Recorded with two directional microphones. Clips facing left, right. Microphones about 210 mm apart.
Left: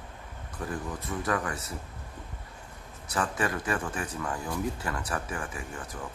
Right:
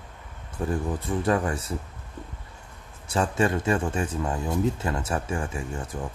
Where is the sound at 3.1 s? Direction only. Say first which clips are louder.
Right 6 dB; 25° right (ahead or behind).